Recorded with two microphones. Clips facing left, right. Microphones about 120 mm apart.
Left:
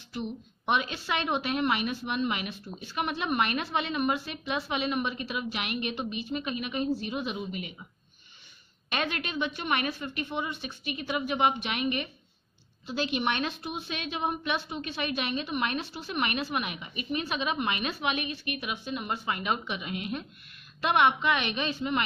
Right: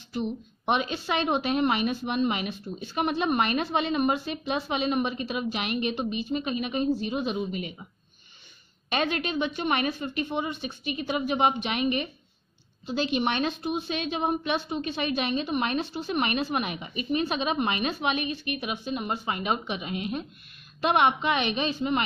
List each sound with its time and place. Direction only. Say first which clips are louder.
0.1 s a woman's voice: right 5 dB; 25° right (ahead or behind)
8.9 s a woman's voice: right 5 dB; 25° right (ahead or behind)